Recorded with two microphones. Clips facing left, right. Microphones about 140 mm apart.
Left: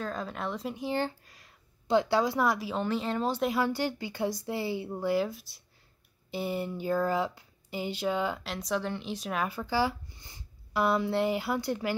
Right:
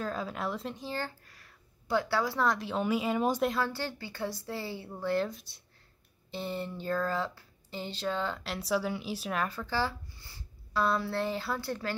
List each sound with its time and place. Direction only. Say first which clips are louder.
0.0 s speech: even; 5° right (ahead or behind)
0.7 s speech: left 6 dB; 15° left (ahead or behind)
2.8 s speech: right 4 dB; 10° right (ahead or behind)
3.5 s speech: left 4 dB; 15° left (ahead or behind)
8.5 s speech: right 1 dB; 5° right (ahead or behind)
9.5 s speech: left 4 dB; 10° left (ahead or behind)